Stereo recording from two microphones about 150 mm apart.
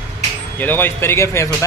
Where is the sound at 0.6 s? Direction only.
15° left (ahead or behind).